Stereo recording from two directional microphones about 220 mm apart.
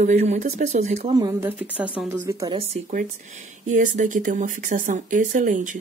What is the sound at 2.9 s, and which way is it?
Speech, 35° right (ahead or behind).